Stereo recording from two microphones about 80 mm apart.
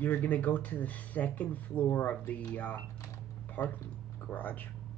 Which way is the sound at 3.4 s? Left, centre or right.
Left.